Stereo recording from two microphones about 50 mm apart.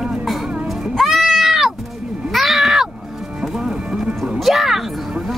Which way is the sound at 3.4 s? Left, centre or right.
Centre.